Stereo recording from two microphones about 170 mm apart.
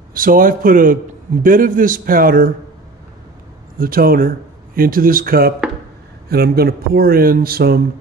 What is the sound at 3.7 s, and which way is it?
Speech, 60° right (ahead or behind).